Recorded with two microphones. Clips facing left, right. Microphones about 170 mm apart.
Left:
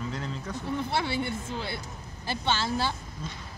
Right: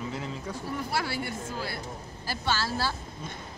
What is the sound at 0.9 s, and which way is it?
A woman's voice, 25° left (ahead or behind).